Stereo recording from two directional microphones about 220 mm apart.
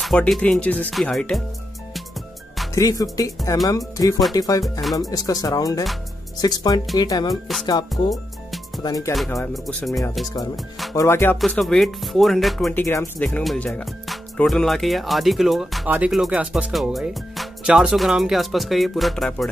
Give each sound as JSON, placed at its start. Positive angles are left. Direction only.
{"t": 0.0, "sound": "speech", "side_deg": 0}
{"t": 2.7, "sound": "speech", "side_deg": 15}
{"t": 7.9, "sound": "music", "side_deg": 0}
{"t": 8.8, "sound": "speech", "side_deg": 15}
{"t": 9.5, "sound": "speech", "side_deg": 0}
{"t": 11.0, "sound": "speech", "side_deg": 10}
{"t": 12.8, "sound": "speech", "side_deg": 10}